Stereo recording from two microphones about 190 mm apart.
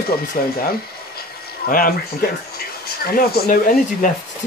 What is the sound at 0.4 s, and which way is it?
Speech, 45° left (ahead or behind).